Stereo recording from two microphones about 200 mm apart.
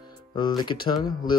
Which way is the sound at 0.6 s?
25° left (ahead or behind).